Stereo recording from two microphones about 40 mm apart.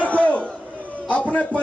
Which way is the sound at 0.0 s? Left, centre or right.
Left.